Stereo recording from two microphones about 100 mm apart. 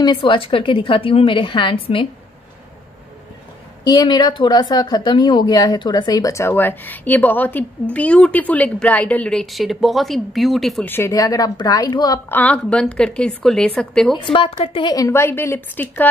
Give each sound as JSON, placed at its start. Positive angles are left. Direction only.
{"t": 0.0, "sound": "a woman's voice", "side_deg": 55}
{"t": 3.8, "sound": "a woman's voice", "side_deg": 45}
{"t": 10.8, "sound": "a woman's voice", "side_deg": 20}
{"t": 11.1, "sound": "speech", "side_deg": 40}
{"t": 12.3, "sound": "a woman's voice", "side_deg": 15}
{"t": 14.1, "sound": "a woman's voice", "side_deg": 60}
{"t": 14.9, "sound": "a woman's voice", "side_deg": 35}